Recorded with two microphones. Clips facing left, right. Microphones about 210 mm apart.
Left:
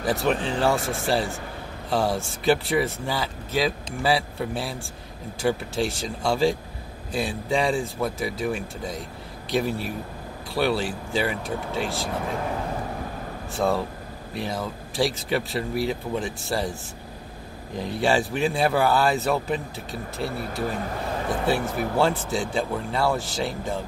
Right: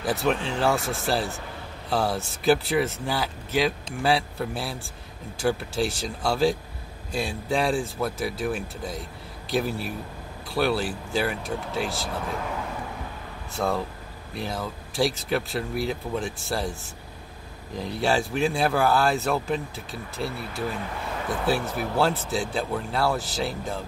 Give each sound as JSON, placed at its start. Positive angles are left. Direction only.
{"t": 0.0, "sound": "speech", "side_deg": 0}
{"t": 13.6, "sound": "speech", "side_deg": 0}
{"t": 17.7, "sound": "speech", "side_deg": 0}
{"t": 20.2, "sound": "speech", "side_deg": 50}
{"t": 21.5, "sound": "speech", "side_deg": 0}